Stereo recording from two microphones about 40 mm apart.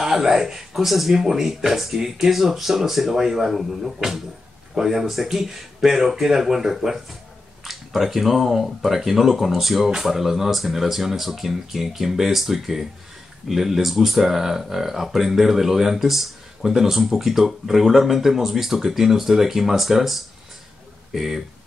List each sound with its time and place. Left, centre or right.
0.0 s speech: centre